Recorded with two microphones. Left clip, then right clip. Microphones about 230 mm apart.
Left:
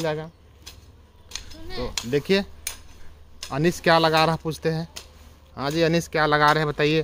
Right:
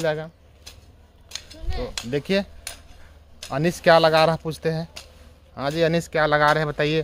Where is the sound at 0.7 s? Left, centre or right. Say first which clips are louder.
Even; centre.